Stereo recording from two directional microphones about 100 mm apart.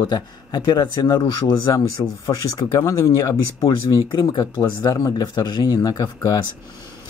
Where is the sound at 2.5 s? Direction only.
30° left (ahead or behind).